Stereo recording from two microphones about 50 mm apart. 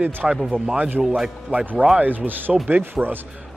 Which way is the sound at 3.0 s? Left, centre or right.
Centre.